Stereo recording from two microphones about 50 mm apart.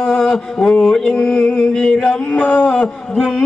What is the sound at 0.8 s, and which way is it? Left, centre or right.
Music, centre.